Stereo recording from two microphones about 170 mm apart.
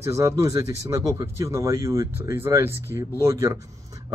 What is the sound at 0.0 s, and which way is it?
Speech, 15° right (ahead or behind).